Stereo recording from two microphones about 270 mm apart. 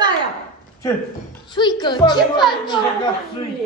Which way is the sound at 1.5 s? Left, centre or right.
Centre.